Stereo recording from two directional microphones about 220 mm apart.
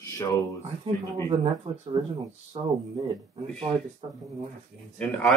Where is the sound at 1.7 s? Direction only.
30° right (ahead or behind).